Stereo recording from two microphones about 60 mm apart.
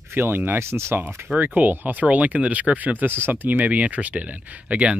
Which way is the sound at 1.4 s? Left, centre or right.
Right.